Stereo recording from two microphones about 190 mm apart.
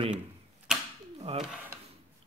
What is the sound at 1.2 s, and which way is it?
Speech, 35° right (ahead or behind).